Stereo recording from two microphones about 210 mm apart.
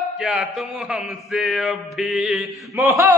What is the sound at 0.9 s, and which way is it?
Mantra, centre (ahead or behind).